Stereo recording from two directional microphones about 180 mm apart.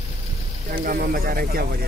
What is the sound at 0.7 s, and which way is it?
Speech, 55° right (ahead or behind).